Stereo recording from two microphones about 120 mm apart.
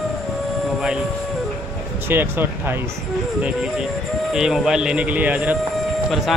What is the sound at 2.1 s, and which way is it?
Speech, 15° right (ahead or behind).